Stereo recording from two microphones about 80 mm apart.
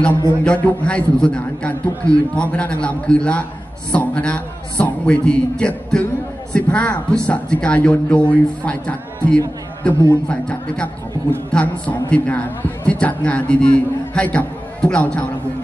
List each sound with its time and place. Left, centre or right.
0.4 s a man's voice: centre